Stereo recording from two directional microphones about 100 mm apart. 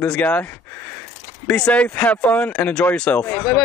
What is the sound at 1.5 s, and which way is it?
Speech, 10° left (ahead or behind).